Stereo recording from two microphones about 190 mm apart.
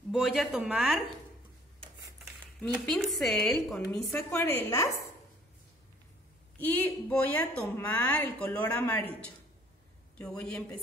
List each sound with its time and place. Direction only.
0.1 s speech: centre (ahead or behind)
2.7 s a woman's voice: centre (ahead or behind)
6.6 s a woman's voice: 10° left (ahead or behind)
10.1 s speech: 5° left (ahead or behind)